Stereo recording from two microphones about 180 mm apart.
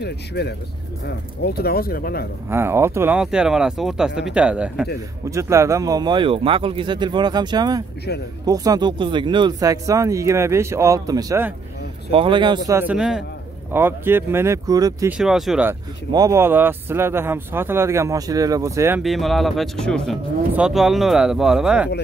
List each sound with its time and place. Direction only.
0.0 s speech: 65° left (ahead or behind)
2.5 s speech: 15° right (ahead or behind)
12.1 s speech: 30° right (ahead or behind)
12.7 s speech: 5° right (ahead or behind)
15.0 s speech: 5° right (ahead or behind)
16.1 s speech: 20° right (ahead or behind)
19.0 s speech: centre (ahead or behind)